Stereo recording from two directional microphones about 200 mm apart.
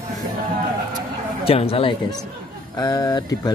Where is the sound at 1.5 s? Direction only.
30° left (ahead or behind).